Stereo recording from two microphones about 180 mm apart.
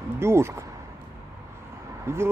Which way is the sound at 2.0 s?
15° right (ahead or behind).